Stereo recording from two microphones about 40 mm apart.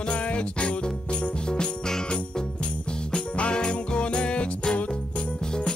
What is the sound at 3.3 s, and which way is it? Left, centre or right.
Music, left.